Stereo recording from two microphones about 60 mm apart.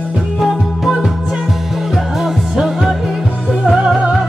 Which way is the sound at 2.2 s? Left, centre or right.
Centre.